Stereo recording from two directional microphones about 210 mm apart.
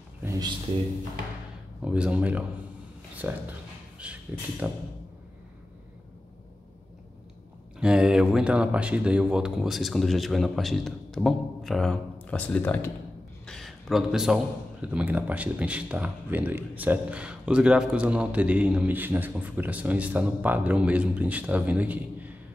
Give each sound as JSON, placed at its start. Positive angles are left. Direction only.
{"t": 0.2, "sound": "speech", "side_deg": -15}
{"t": 1.9, "sound": "a man's voice", "side_deg": -5}
{"t": 7.8, "sound": "a man's voice", "side_deg": -5}